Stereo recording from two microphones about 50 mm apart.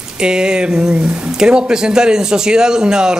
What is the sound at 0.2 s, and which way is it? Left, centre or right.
Speech, centre.